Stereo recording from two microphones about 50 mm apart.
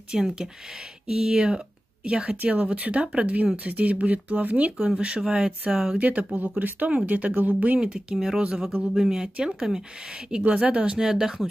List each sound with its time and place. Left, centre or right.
0.1 s speech: centre
5.7 s speech: centre
5.9 s speech: right
7.8 s speech: centre